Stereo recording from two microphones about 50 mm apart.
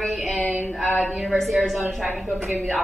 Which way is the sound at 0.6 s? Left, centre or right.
Left.